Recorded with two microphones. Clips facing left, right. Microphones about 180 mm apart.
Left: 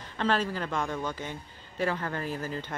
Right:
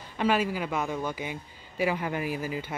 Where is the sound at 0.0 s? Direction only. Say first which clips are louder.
Right 2 dB; 10° right (ahead or behind).